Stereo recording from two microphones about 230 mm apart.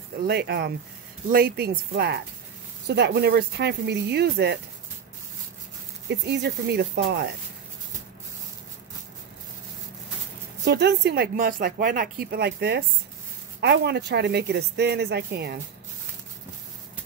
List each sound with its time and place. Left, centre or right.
0.3 s speech: right
6.0 s speech: right
10.6 s speech: right